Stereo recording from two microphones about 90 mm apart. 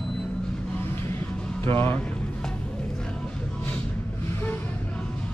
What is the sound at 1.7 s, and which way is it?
Speech, 25° left (ahead or behind).